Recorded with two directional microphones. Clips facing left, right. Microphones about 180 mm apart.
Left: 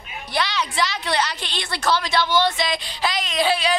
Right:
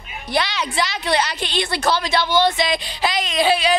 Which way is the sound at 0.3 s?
15° right (ahead or behind).